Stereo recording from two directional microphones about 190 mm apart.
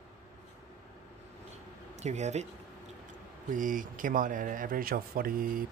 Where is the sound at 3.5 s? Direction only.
45° right (ahead or behind).